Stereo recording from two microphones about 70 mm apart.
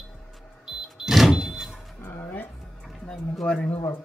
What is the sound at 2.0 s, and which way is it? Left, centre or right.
Music, left.